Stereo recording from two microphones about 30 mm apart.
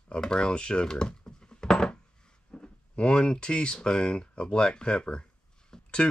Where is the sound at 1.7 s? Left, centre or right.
Left.